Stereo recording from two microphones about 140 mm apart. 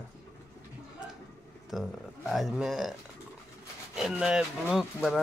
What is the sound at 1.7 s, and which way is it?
Speech, centre (ahead or behind).